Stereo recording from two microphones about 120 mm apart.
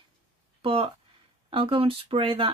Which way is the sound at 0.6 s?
45° right (ahead or behind).